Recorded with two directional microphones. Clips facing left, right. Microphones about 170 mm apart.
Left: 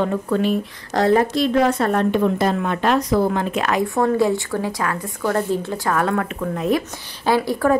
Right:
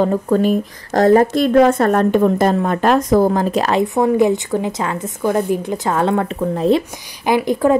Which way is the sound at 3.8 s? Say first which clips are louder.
Right 3 dB; 20° right (ahead or behind).